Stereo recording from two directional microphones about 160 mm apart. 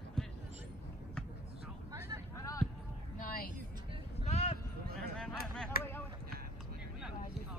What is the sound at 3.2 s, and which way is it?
Music, 60° left (ahead or behind).